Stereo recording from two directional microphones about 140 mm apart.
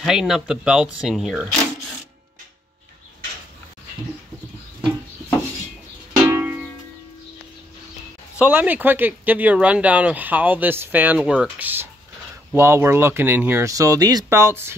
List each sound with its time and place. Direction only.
0.0 s speech: 5° right (ahead or behind)
6.2 s music: 20° right (ahead or behind)
8.4 s speech: 15° right (ahead or behind)